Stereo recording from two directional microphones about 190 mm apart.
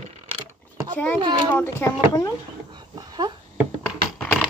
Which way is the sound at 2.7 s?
20° right (ahead or behind).